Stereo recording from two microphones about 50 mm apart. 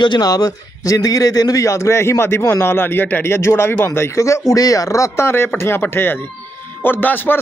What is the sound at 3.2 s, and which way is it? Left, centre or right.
A man's voice, left.